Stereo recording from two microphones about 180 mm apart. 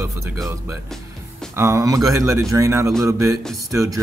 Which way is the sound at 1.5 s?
15° right (ahead or behind).